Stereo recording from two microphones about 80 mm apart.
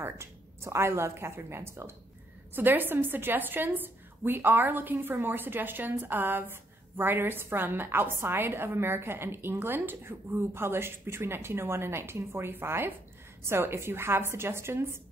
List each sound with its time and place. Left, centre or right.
0.0 s a woman's voice: right